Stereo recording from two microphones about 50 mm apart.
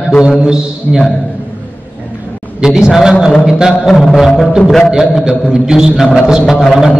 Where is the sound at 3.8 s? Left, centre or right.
Centre.